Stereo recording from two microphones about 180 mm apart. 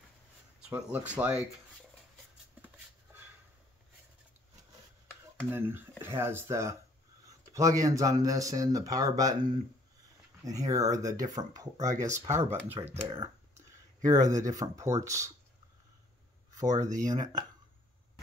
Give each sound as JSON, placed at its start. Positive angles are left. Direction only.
{"t": 0.6, "sound": "speech", "side_deg": -5}
{"t": 5.5, "sound": "speech", "side_deg": -10}
{"t": 16.5, "sound": "speech", "side_deg": -20}